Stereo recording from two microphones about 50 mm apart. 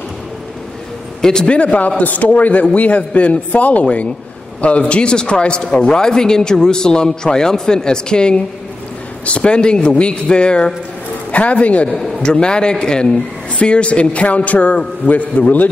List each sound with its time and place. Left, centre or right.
1.2 s a man's voice: centre
1.6 s a man's voice: left
11.9 s a man's voice: centre; by 15.7 s left